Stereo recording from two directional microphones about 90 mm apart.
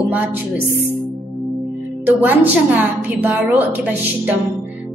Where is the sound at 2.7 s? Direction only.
20° right (ahead or behind).